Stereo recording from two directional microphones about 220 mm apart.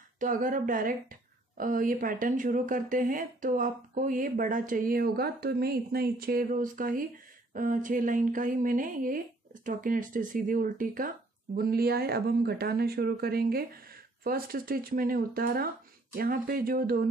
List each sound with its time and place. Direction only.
0.2 s speech: 35° right (ahead or behind)